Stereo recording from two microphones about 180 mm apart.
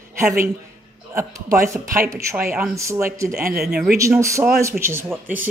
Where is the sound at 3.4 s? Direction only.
55° right (ahead or behind).